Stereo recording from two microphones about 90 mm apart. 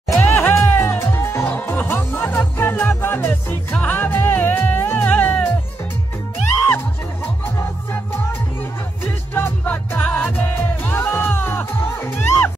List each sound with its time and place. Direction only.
0.2 s music: 25° left (ahead or behind)
9.0 s music: 25° left (ahead or behind)